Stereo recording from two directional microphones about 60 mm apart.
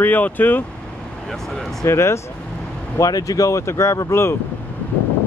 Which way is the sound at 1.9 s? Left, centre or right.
Left.